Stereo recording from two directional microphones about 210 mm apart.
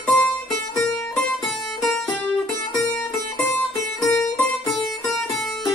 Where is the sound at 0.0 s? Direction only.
5° left (ahead or behind).